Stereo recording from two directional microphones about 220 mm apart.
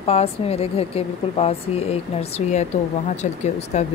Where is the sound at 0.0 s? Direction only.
25° left (ahead or behind).